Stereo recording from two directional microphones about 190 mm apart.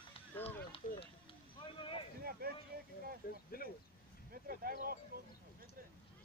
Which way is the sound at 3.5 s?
50° left (ahead or behind).